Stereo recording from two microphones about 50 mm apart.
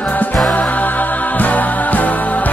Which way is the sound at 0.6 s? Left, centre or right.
Left.